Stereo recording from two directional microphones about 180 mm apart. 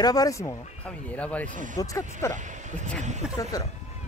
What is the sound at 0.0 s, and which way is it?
Speech, 20° left (ahead or behind).